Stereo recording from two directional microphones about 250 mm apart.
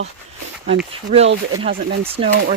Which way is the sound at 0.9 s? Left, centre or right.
Right.